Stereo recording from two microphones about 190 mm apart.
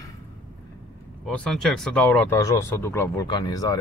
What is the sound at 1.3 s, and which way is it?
Speech, 5° left (ahead or behind).